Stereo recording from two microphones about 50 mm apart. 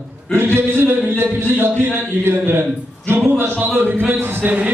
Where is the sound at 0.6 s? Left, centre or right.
Right.